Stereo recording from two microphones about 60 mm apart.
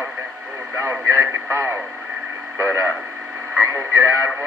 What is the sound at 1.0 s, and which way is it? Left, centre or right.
Speech, right.